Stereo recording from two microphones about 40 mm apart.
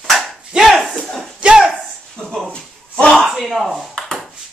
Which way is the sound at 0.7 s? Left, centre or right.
Centre.